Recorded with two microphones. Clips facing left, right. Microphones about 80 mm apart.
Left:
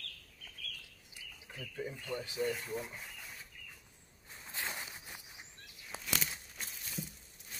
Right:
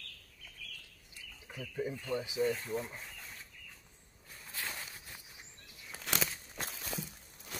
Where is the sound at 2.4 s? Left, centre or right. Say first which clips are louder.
Right 2 dB; centre.